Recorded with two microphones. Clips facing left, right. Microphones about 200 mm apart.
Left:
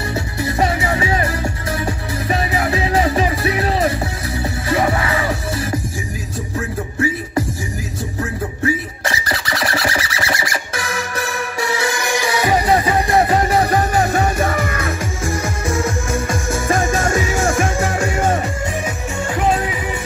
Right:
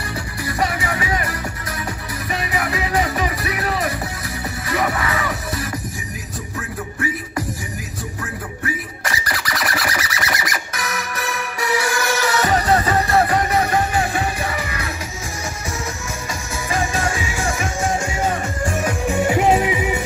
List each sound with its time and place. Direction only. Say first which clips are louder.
0.1 s music: left 4 dB; 25° left (ahead or behind)
8.2 s a sound: left 9 dB; 25° left (ahead or behind)
13.4 s music: left 3 dB; 30° left (ahead or behind); by 18.2 s 60° left (ahead or behind)
19.0 s music: right 3 dB; 15° right (ahead or behind)